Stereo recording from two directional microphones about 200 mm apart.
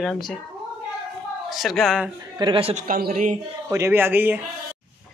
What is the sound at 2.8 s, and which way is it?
Speech, 45° right (ahead or behind).